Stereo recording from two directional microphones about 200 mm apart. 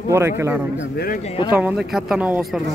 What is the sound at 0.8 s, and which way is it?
Speech, 50° left (ahead or behind).